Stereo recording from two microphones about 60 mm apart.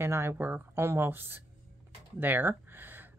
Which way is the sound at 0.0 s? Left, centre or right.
Right.